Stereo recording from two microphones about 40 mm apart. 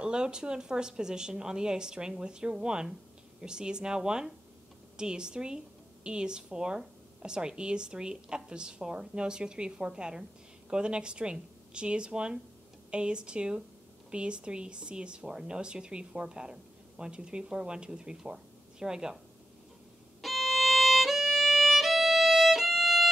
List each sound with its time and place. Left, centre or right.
0.0 s speech: right
20.2 s violin: centre